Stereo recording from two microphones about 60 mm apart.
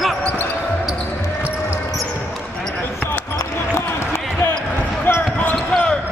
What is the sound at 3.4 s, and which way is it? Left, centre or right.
Basketball bounce, left.